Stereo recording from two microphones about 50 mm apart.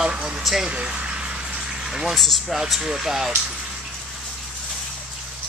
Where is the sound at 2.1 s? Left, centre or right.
Centre.